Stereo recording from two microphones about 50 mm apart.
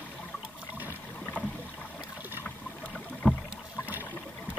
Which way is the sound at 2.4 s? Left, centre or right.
Left.